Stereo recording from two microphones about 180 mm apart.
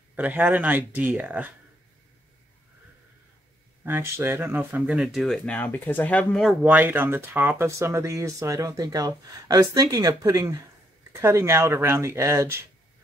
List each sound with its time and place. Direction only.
0.1 s speech: 10° right (ahead or behind)
3.8 s speech: 15° right (ahead or behind); by 6.5 s 5° left (ahead or behind)
6.6 s speech: 10° right (ahead or behind)